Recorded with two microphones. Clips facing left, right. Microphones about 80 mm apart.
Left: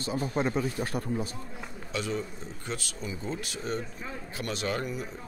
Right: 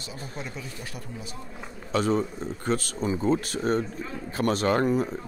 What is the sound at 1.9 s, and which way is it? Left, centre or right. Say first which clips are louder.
Speech: right 8 dB; right.